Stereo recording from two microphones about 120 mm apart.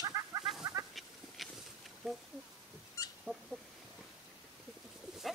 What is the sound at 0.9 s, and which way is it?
Goat, centre (ahead or behind).